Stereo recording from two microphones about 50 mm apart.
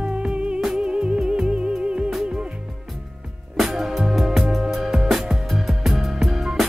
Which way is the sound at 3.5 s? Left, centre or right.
Centre.